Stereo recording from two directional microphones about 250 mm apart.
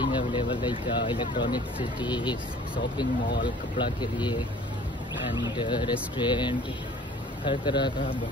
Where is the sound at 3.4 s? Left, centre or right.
Centre.